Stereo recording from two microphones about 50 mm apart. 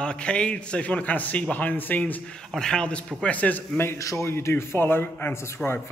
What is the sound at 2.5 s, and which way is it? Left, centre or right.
Speech, centre.